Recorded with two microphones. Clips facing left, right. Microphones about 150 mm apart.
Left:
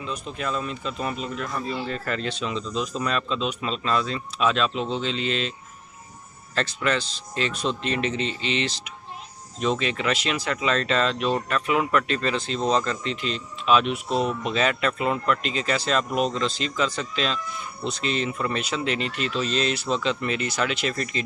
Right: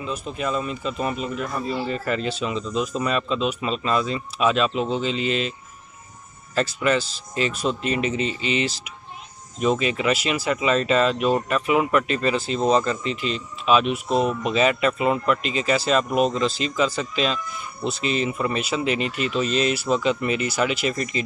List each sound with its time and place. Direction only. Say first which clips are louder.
0.0 s speech: right 3 dB; 5° right (ahead or behind)
6.5 s speech: right 4 dB; 5° right (ahead or behind)
14.0 s speech: right 3 dB; 45° right (ahead or behind)
14.4 s speech: right 4 dB; 5° right (ahead or behind)